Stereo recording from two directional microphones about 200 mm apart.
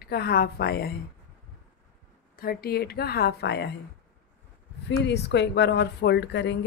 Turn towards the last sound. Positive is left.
turn(degrees=60)  # may be behind; listen again after turning